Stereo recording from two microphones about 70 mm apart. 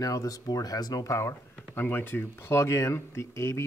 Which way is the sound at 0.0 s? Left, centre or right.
Left.